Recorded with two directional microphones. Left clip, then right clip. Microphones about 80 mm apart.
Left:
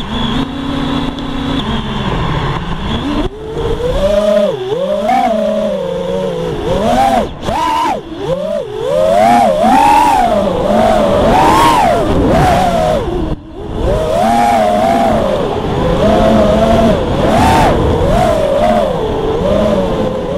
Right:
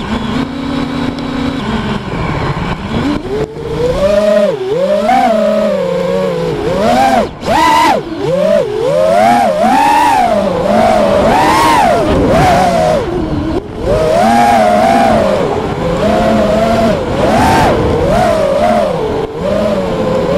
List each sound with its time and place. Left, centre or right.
6.7 s vehicle: right
9.2 s vehicle: centre
11.2 s a sound: right
12.0 s vehicle: centre
14.2 s vehicle: centre
16.0 s vehicle: right